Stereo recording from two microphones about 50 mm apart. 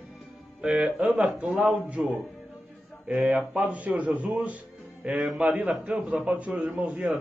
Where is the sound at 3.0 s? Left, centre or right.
Right.